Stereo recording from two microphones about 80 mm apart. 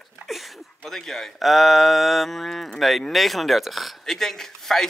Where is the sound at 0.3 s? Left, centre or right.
Centre.